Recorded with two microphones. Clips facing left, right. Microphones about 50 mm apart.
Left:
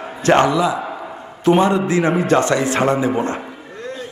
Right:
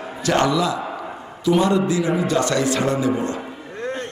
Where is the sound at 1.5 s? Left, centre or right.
Left.